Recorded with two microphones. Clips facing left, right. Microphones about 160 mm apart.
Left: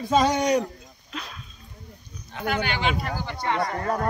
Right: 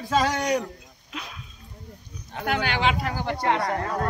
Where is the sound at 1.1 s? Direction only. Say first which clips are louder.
Left 1 dB; 10° right (ahead or behind).